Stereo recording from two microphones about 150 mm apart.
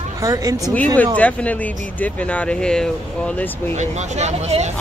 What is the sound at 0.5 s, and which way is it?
Speech, 20° left (ahead or behind).